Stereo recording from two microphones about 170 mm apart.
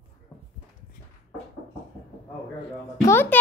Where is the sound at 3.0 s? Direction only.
15° left (ahead or behind).